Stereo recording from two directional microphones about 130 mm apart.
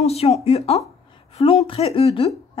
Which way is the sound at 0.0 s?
50° left (ahead or behind).